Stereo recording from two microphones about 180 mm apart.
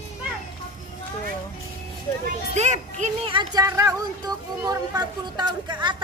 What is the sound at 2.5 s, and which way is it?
Speech, 40° right (ahead or behind).